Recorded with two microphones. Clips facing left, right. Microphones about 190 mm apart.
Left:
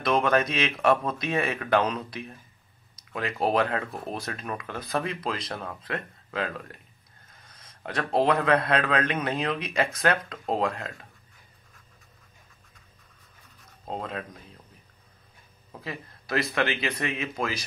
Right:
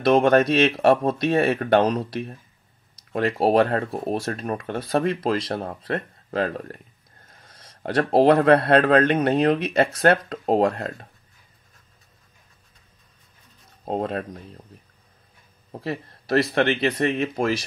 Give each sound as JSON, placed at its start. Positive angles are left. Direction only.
{"t": 0.0, "sound": "speech", "side_deg": -40}
{"t": 13.8, "sound": "speech", "side_deg": -45}
{"t": 15.7, "sound": "speech", "side_deg": -40}